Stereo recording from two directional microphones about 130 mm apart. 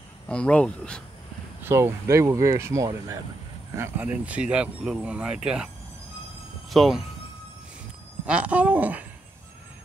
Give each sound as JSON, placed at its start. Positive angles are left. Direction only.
{"t": 0.3, "sound": "speech", "side_deg": 10}
{"t": 1.6, "sound": "speech", "side_deg": -20}
{"t": 6.7, "sound": "speech", "side_deg": 0}
{"t": 8.3, "sound": "speech", "side_deg": -10}